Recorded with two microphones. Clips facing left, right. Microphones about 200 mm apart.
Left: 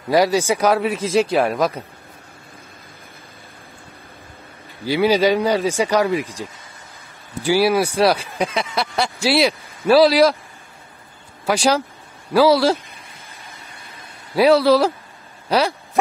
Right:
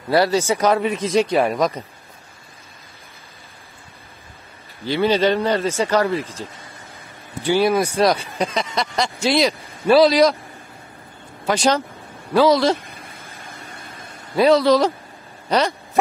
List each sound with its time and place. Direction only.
0.1 s speech: 10° left (ahead or behind)
4.8 s speech: 10° left (ahead or behind)
7.4 s speech: 5° left (ahead or behind)
11.4 s speech: 10° left (ahead or behind)
13.5 s vehicle: 50° right (ahead or behind)
14.3 s speech: 5° left (ahead or behind)
15.4 s a sound: 5° left (ahead or behind)